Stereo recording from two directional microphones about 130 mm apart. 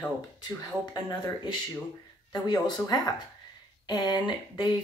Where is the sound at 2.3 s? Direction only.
30° left (ahead or behind).